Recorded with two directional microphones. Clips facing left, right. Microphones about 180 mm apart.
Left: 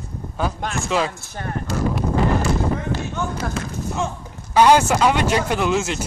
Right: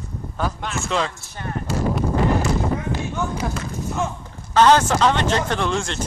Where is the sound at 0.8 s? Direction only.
5° left (ahead or behind).